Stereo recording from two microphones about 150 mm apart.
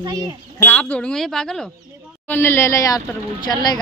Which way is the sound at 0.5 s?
15° left (ahead or behind).